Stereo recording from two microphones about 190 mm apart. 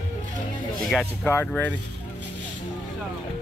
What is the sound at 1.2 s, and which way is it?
Speech, 10° left (ahead or behind).